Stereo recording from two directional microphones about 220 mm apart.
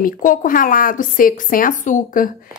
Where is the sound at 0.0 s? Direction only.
35° left (ahead or behind).